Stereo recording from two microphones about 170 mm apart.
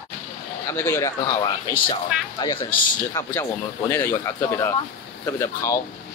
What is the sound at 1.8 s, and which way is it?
Speech, 25° left (ahead or behind).